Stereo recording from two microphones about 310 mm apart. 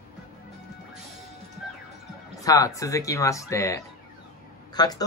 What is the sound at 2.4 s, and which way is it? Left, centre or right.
Speech, centre.